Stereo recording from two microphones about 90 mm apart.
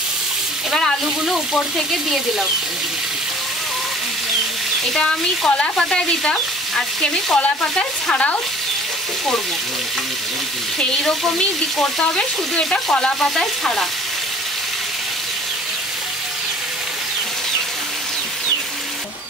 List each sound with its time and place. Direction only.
0.7 s speech: 5° left (ahead or behind)
4.9 s frying: 10° left (ahead or behind)
11.8 s frying: 10° left (ahead or behind)